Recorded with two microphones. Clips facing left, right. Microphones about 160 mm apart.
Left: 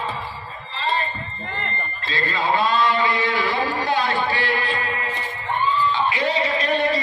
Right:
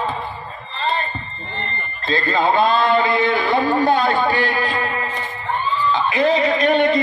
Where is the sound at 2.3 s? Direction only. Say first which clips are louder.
Right 4 dB; 55° right (ahead or behind).